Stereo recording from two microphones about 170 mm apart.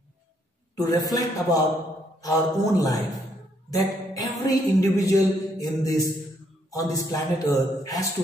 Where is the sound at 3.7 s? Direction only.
20° left (ahead or behind).